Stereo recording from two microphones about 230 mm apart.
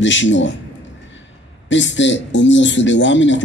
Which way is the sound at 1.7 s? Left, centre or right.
Left.